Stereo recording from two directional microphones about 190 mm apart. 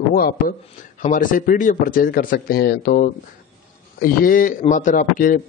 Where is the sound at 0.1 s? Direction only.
50° left (ahead or behind).